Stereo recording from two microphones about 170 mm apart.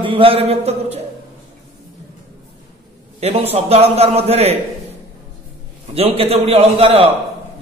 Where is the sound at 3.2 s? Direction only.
35° right (ahead or behind).